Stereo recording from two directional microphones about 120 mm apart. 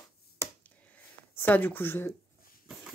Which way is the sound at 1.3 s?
15° left (ahead or behind).